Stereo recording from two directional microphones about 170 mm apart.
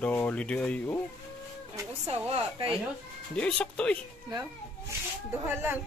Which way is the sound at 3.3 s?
5° left (ahead or behind).